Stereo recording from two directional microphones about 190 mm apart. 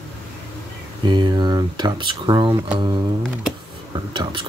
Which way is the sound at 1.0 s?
25° right (ahead or behind).